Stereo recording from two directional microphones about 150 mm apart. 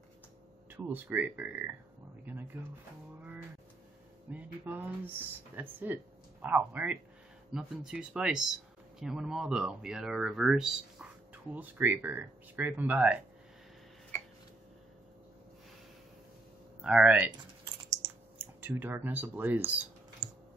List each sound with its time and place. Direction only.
0.7 s speech: 15° right (ahead or behind)
4.3 s speech: 10° right (ahead or behind)
16.8 s speech: 10° right (ahead or behind)
17.8 s clicking: 15° right (ahead or behind)
20.2 s typing: 30° right (ahead or behind)